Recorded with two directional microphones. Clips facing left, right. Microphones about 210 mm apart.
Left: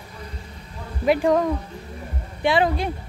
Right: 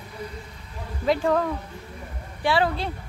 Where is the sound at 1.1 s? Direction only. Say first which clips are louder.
Left 3 dB; 15° left (ahead or behind).